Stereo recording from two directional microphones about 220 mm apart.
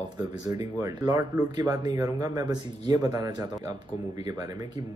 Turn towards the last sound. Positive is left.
turn(degrees=-20)  # may be behind; listen again after turning